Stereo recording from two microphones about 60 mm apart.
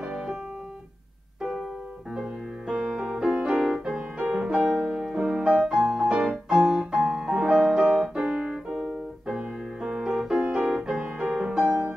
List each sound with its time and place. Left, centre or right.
2.7 s music: centre
3.3 s music: centre
7.3 s music: centre
8.6 s piano: centre
11.1 s music: centre